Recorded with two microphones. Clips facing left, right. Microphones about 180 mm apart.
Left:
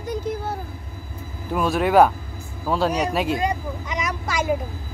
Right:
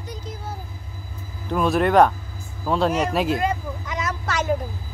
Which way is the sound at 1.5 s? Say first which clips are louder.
Right 1 dB; centre (ahead or behind).